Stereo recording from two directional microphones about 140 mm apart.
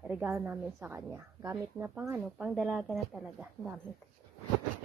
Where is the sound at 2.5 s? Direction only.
Centre (ahead or behind).